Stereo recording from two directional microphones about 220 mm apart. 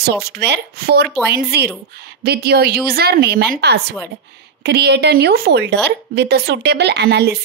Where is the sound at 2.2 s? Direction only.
45° right (ahead or behind).